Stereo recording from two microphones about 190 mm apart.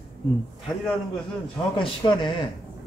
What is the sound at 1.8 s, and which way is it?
Speech, 25° left (ahead or behind).